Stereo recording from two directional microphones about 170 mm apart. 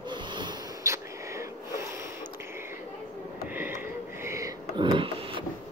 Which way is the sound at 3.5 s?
10° right (ahead or behind).